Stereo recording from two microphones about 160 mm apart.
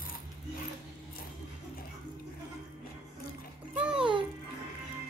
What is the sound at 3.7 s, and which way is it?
Music, 5° right (ahead or behind).